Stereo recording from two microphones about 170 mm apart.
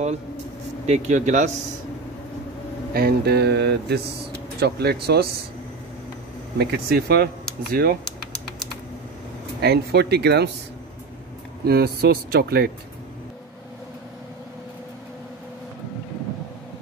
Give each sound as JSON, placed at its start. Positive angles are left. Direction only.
{"t": 0.8, "sound": "speech", "side_deg": -40}
{"t": 2.9, "sound": "speech", "side_deg": -65}
{"t": 6.6, "sound": "speech", "side_deg": -65}
{"t": 9.6, "sound": "speech", "side_deg": -75}
{"t": 11.6, "sound": "speech", "side_deg": -65}